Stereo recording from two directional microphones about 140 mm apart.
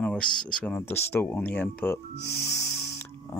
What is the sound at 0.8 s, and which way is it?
Speech, 20° left (ahead or behind).